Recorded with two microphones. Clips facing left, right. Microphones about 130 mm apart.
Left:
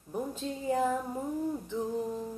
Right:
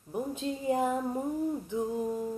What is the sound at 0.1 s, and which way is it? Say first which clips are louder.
Speech: right 2 dB; 15° right (ahead or behind).